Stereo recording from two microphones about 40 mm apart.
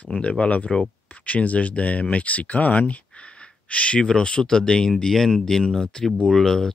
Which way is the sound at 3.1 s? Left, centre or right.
Left.